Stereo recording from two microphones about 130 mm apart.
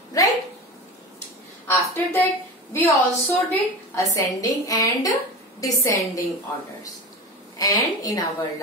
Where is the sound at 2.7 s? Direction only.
20° left (ahead or behind).